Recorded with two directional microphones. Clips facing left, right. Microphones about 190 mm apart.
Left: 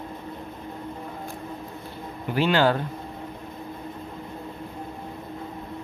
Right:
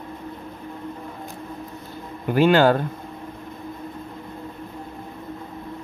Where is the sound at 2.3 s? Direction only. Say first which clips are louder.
Right 5 dB; 50° right (ahead or behind).